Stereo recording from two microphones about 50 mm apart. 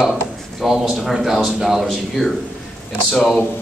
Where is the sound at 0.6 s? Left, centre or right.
Centre.